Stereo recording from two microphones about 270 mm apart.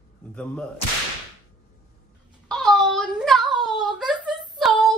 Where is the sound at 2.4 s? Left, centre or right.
Centre.